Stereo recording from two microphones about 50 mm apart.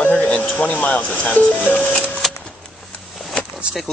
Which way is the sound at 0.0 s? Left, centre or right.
Left.